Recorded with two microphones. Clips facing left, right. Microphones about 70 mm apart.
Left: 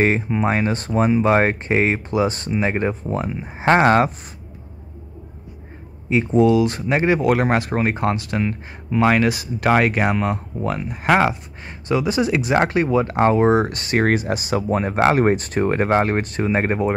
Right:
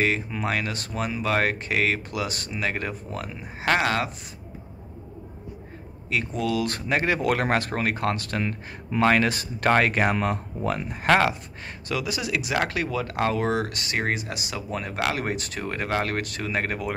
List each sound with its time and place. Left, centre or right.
0.0 s speech: left
6.0 s speech: left
11.9 s speech: left